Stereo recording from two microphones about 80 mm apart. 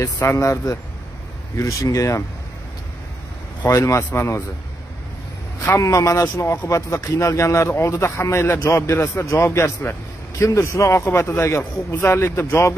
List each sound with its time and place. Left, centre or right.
0.4 s speech: left
3.6 s speech: left
5.6 s a man's voice: left